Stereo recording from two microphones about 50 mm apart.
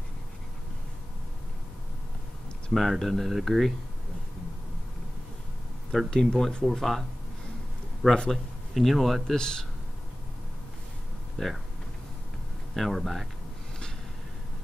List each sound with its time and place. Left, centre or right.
2.7 s speech: centre
6.0 s speech: centre
6.7 s speech: centre
8.1 s speech: centre
9.3 s speech: centre
11.4 s speech: centre
12.7 s speech: centre